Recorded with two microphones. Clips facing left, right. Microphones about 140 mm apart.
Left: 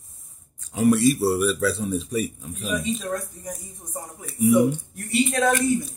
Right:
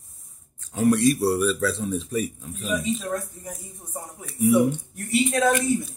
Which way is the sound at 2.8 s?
5° right (ahead or behind).